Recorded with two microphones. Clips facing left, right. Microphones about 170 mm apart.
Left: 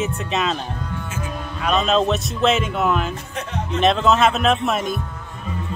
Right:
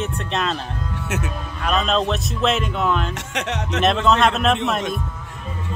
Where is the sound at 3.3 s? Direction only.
85° right.